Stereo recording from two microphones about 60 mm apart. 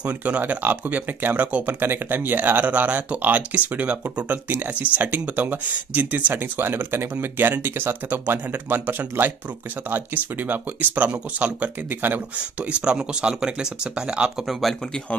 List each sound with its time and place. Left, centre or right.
0.0 s speech: right
12.8 s speech: centre
14.5 s speech: centre